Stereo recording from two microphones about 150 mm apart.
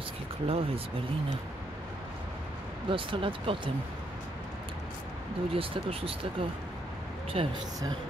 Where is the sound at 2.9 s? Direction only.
35° right (ahead or behind).